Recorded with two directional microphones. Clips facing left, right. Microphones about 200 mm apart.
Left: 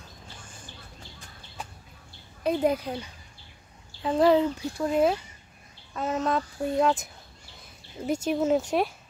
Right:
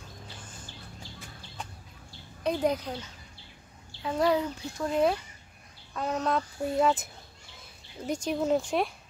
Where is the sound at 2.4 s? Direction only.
5° left (ahead or behind).